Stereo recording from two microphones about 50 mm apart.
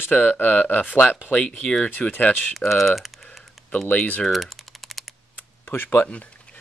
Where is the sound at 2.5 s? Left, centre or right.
Centre.